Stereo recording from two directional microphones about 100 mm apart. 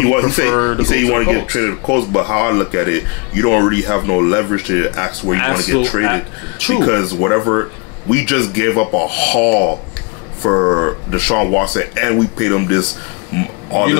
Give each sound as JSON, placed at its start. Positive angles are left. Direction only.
{"t": 0.0, "sound": "speech", "side_deg": 15}